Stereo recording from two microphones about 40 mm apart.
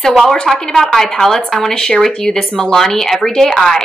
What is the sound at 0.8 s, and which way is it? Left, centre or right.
A woman's voice, centre.